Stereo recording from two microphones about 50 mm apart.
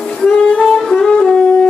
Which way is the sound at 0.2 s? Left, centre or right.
Centre.